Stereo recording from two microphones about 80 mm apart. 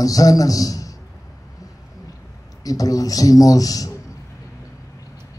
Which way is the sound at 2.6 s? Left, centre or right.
Left.